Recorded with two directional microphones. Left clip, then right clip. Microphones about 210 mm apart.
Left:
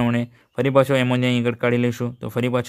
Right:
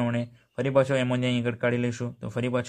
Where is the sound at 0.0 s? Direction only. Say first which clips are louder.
Left 6 dB; 30° left (ahead or behind).